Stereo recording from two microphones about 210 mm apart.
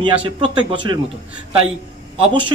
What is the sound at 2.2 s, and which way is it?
Speech, 25° right (ahead or behind).